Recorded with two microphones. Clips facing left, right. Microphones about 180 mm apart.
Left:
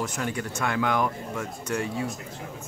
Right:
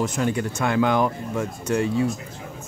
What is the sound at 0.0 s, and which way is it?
Speech, 25° right (ahead or behind).